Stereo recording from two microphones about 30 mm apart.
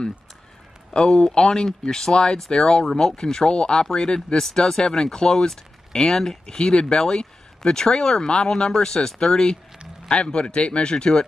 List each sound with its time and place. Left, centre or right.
0.9 s speech: left
2.9 s speech: centre